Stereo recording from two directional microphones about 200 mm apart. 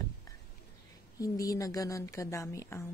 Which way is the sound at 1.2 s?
15° left (ahead or behind).